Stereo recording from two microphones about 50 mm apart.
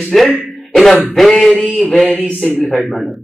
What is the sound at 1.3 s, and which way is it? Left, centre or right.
Speech, centre.